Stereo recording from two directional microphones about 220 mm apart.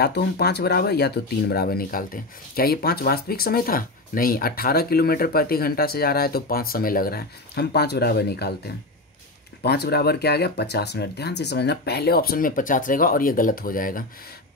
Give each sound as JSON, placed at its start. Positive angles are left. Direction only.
{"t": 0.0, "sound": "speech", "side_deg": 45}